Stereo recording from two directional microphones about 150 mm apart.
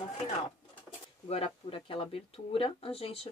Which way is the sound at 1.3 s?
40° left (ahead or behind).